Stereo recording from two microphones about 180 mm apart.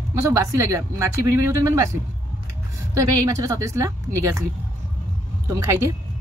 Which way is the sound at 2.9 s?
20° right (ahead or behind).